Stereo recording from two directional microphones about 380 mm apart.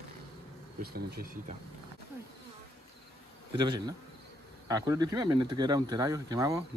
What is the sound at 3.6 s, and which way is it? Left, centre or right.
Speech, centre.